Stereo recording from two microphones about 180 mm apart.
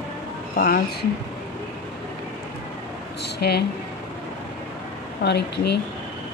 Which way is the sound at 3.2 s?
65° left (ahead or behind).